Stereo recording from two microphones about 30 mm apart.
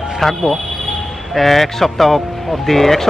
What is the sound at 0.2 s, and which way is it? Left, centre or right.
A man's voice, centre.